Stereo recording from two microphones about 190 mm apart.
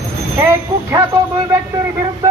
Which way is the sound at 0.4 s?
15° right (ahead or behind).